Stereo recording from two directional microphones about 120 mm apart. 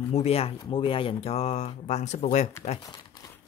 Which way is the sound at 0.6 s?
45° left (ahead or behind).